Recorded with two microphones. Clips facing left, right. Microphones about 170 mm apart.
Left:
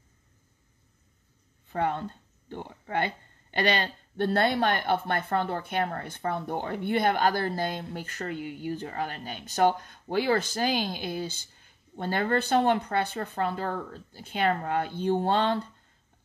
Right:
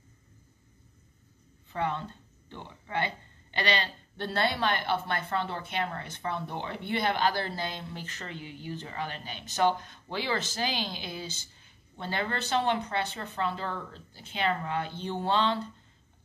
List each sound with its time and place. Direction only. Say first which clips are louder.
1.7 s a woman's voice: left 3 dB; 50° left (ahead or behind)